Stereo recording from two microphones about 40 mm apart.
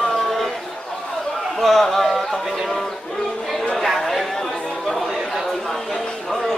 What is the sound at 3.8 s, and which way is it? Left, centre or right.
Chatter, centre.